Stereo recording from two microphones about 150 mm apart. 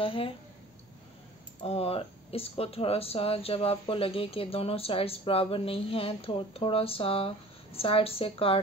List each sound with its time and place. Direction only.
0.0 s speech: 35° left (ahead or behind)
1.6 s speech: 40° left (ahead or behind)